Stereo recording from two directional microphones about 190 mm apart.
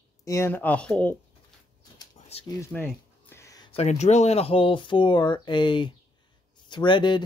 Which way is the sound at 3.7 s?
35° left (ahead or behind).